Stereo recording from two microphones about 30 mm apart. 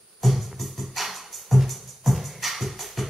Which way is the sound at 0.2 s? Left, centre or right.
Centre.